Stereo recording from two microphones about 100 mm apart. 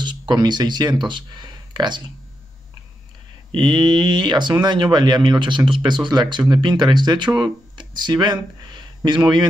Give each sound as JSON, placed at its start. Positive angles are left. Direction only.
{"t": 0.0, "sound": "speech", "side_deg": -50}
{"t": 3.5, "sound": "speech", "side_deg": -50}